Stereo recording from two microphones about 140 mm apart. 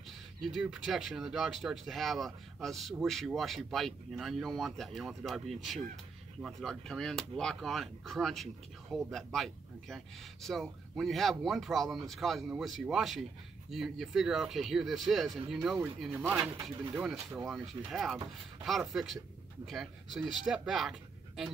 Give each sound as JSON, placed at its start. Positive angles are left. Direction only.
{"t": 0.4, "sound": "speech", "side_deg": 0}